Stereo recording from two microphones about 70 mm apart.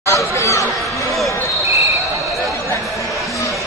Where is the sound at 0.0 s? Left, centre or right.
Left.